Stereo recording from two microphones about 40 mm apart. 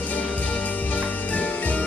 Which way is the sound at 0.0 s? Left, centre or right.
Left.